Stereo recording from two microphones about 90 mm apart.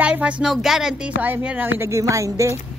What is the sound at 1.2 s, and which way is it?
Music, 15° right (ahead or behind).